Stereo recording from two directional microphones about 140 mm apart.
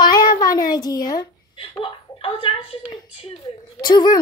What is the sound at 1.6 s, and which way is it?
Chuckle, 40° left (ahead or behind).